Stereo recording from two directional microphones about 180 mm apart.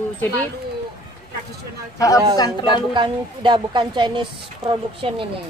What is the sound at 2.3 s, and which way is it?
Speech, 25° left (ahead or behind).